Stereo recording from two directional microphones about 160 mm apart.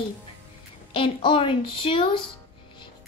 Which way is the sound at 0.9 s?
30° left (ahead or behind).